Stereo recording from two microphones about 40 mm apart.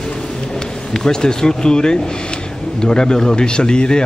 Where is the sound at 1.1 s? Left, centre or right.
Centre.